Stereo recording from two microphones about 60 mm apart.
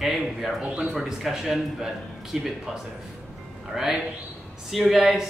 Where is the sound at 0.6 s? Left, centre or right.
Centre.